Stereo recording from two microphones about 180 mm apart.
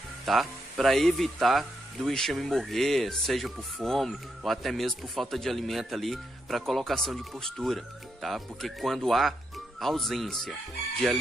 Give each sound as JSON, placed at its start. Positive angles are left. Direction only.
{"t": 0.2, "sound": "speech", "side_deg": 0}